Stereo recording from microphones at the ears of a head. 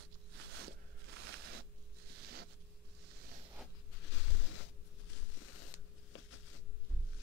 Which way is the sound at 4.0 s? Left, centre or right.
Left.